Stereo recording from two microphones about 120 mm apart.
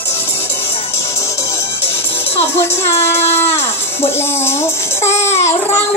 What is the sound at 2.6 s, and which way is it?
Speech, 20° left (ahead or behind).